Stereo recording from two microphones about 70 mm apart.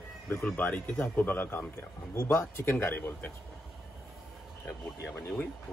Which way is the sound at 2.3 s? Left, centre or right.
Left.